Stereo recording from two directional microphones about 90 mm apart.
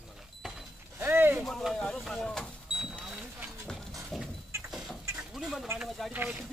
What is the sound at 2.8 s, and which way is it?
Vehicle, 5° right (ahead or behind).